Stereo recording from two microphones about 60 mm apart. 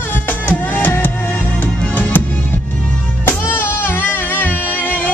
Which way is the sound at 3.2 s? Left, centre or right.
Left.